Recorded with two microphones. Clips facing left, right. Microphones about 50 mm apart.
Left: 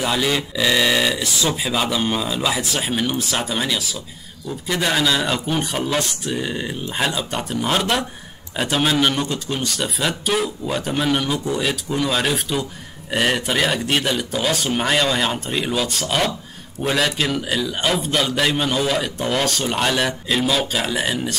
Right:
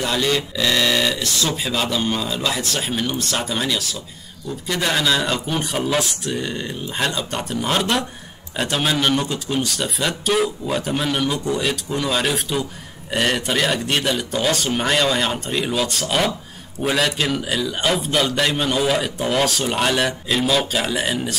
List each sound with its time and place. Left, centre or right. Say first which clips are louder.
0.0 s a man's voice: even; centre